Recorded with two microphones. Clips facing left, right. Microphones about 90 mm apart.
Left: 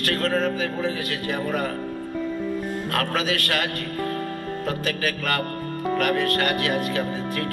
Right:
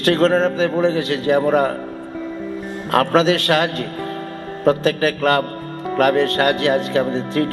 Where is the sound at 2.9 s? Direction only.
25° right (ahead or behind).